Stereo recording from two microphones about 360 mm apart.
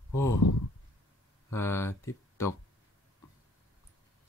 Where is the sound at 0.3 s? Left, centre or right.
Left.